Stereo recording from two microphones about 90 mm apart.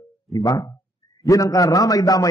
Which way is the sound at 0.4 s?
45° left (ahead or behind).